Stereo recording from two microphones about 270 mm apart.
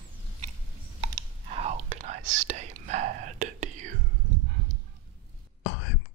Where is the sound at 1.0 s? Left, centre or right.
Right.